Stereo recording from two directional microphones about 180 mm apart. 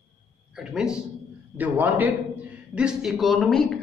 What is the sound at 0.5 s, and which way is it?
A man's voice, 5° right (ahead or behind).